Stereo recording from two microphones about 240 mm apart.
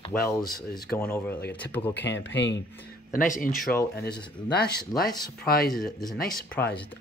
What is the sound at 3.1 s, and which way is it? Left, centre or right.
Speech, left.